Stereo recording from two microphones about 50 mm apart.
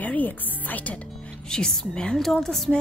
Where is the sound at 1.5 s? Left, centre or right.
Centre.